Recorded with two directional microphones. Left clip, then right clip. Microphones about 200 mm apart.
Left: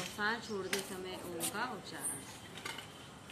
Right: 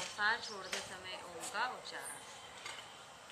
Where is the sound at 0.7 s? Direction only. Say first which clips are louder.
Left 3 dB; 50° left (ahead or behind).